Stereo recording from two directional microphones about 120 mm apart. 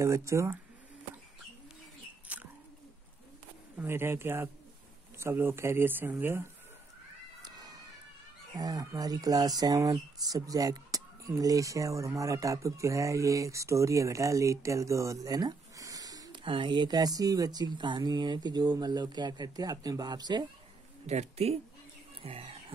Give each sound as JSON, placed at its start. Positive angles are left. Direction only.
{"t": 0.0, "sound": "speech", "side_deg": -25}
{"t": 2.3, "sound": "bird", "side_deg": -10}
{"t": 3.7, "sound": "speech", "side_deg": -20}
{"t": 7.4, "sound": "cat", "side_deg": -35}
{"t": 8.5, "sound": "speech", "side_deg": -30}
{"t": 16.4, "sound": "speech", "side_deg": -45}
{"t": 21.1, "sound": "speech", "side_deg": -65}
{"t": 22.2, "sound": "speech", "side_deg": -50}